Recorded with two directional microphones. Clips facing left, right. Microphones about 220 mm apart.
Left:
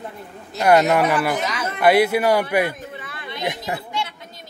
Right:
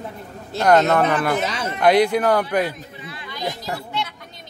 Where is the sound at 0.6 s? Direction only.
10° left (ahead or behind).